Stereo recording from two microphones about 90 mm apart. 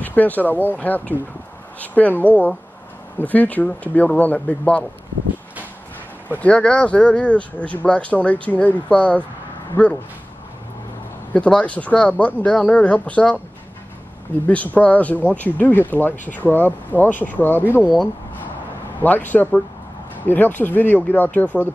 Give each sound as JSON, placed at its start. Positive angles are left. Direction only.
{"t": 0.0, "sound": "speech", "side_deg": 20}
{"t": 6.2, "sound": "speech", "side_deg": 15}
{"t": 11.3, "sound": "speech", "side_deg": 15}
{"t": 14.5, "sound": "speech", "side_deg": 15}
{"t": 19.0, "sound": "speech", "side_deg": 20}